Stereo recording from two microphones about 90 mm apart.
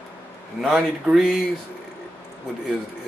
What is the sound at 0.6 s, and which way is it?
Speech, centre (ahead or behind).